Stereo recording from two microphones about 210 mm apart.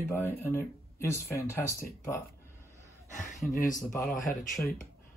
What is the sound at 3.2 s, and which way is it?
Speech, 40° left (ahead or behind).